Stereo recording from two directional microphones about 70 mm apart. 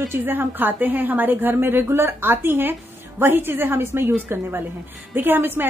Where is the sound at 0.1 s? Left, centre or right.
Right.